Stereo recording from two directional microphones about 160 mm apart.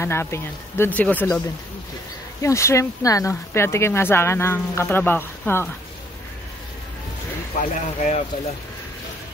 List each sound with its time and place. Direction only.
0.0 s speech: 15° left (ahead or behind)
2.4 s speech: 20° left (ahead or behind)
7.5 s speech: 50° left (ahead or behind)